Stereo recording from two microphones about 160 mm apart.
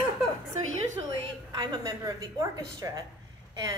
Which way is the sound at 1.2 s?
25° right (ahead or behind).